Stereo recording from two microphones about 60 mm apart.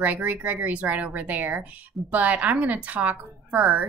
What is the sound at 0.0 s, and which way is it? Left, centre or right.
Speech, right.